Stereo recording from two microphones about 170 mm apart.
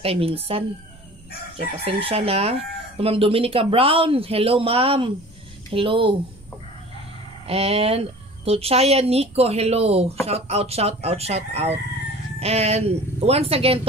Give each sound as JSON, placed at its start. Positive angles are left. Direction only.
{"t": 0.0, "sound": "speech", "side_deg": -35}
{"t": 1.9, "sound": "speech", "side_deg": -35}
{"t": 7.4, "sound": "speech", "side_deg": -35}